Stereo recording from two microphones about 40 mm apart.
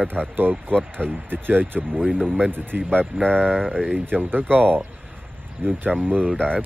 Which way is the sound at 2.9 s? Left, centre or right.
Left.